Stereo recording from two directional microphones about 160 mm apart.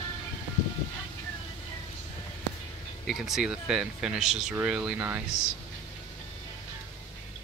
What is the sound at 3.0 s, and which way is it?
Speech, centre (ahead or behind).